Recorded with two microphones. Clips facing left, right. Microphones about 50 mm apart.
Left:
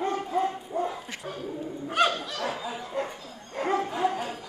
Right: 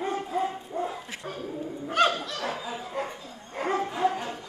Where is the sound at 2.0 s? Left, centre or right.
Centre.